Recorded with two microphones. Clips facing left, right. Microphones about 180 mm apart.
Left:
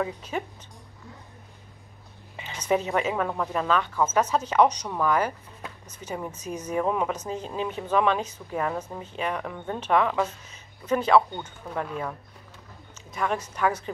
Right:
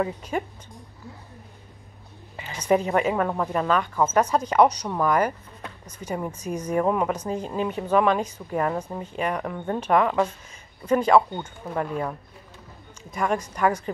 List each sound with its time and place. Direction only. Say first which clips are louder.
2.5 s speech: right 3 dB; 10° right (ahead or behind)